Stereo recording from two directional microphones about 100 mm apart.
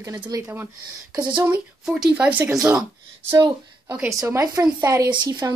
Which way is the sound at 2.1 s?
15° right (ahead or behind).